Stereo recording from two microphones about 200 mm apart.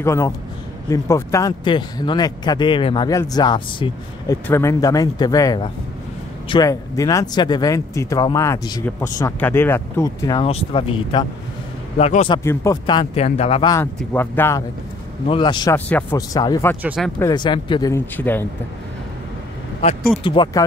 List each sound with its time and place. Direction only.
0.0 s speech: 15° left (ahead or behind); by 12.4 s 30° left (ahead or behind)
12.4 s speech: 20° left (ahead or behind)
13.0 s speech: 30° left (ahead or behind)
13.9 s speech: 10° left (ahead or behind)
15.2 s speech: 25° left (ahead or behind)
15.9 s speech: 5° left (ahead or behind)
16.2 s speech: 20° left (ahead or behind)
16.8 s speech: 5° right (ahead or behind)
17.2 s speech: 20° left (ahead or behind)
20.2 s speech: 25° left (ahead or behind)